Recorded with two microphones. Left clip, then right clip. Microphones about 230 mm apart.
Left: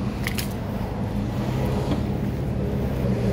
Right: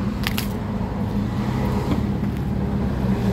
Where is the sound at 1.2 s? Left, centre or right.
Right.